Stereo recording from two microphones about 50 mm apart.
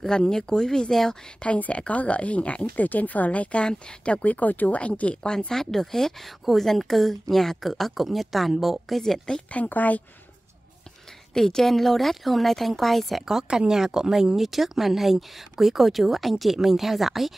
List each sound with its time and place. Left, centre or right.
0.0 s speech: centre
1.4 s speech: left; by 9.2 s centre
9.5 s speech: left
11.3 s speech: centre
13.2 s speech: centre